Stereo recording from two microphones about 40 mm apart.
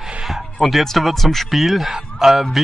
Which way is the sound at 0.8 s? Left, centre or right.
Centre.